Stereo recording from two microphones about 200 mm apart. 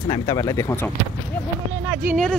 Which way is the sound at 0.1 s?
15° left (ahead or behind).